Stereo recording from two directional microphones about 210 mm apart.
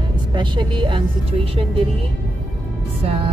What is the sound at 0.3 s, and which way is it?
Speech, 20° right (ahead or behind).